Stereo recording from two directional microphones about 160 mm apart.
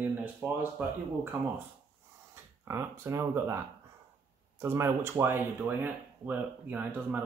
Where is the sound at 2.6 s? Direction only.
15° right (ahead or behind).